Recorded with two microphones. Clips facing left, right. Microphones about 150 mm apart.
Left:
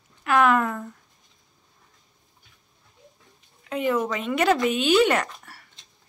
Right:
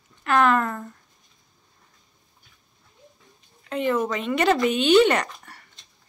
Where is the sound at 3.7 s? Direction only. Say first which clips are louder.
Right 1 dB; 10° left (ahead or behind).